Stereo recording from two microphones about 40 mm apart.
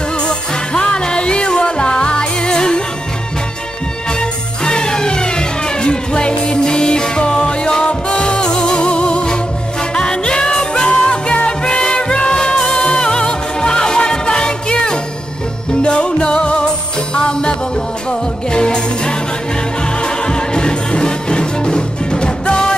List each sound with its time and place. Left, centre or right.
0.3 s music: centre
4.2 s music: centre